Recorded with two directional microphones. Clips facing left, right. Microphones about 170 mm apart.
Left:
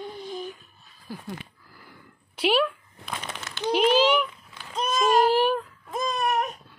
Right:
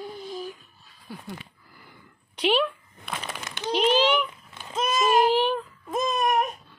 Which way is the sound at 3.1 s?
10° right (ahead or behind).